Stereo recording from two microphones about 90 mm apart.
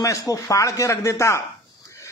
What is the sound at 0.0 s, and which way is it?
A man's voice, 40° left (ahead or behind).